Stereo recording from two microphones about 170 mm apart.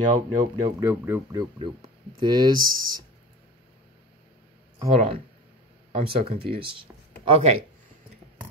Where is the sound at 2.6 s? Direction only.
55° right (ahead or behind).